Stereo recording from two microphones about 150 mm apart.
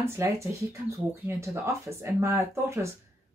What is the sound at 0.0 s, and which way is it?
Speech, 15° right (ahead or behind).